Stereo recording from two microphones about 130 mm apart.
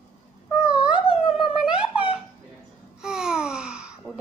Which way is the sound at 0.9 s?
40° left (ahead or behind).